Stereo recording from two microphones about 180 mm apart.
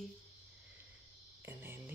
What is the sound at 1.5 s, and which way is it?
Speech, 10° right (ahead or behind).